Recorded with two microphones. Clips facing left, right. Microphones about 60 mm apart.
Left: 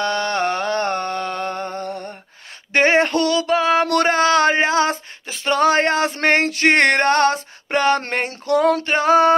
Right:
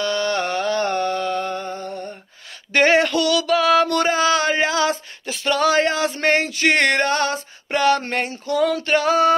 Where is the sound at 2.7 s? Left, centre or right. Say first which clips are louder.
Even; left.